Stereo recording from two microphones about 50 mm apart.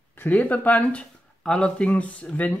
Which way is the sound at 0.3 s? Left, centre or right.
Left.